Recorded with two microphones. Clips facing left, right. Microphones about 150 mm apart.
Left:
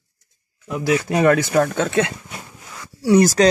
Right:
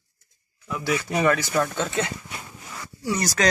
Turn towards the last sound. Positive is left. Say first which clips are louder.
# left 13 dB
turn(degrees=65)  # may be behind; listen again after turning